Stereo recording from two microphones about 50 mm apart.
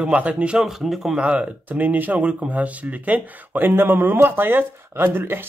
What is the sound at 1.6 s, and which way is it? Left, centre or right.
Speech, right.